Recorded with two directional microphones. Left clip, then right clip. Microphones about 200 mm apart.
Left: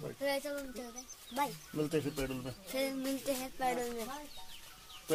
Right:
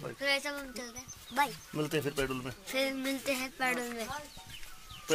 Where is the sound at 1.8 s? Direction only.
30° right (ahead or behind).